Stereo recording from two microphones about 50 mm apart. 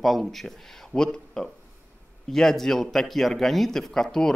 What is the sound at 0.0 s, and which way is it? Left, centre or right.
Speech, centre.